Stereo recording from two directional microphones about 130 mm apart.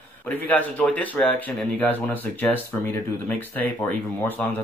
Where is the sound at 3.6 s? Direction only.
15° left (ahead or behind).